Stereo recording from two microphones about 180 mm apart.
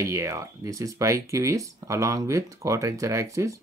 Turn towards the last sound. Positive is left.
turn(degrees=-15)  # may be behind; listen again after turning